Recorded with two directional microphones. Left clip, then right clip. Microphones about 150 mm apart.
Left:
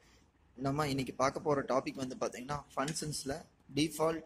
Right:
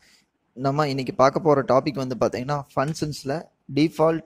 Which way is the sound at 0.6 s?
55° right (ahead or behind).